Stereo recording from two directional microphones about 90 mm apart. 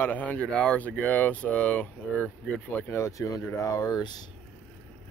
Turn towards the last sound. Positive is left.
turn(degrees=55)  # may be behind; listen again after turning